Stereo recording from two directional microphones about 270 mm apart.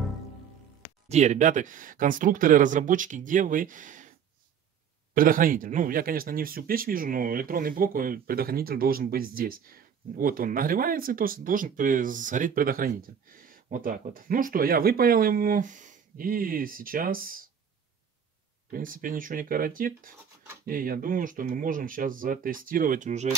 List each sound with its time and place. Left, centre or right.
1.0 s speech: right
5.1 s speech: right
18.7 s speech: right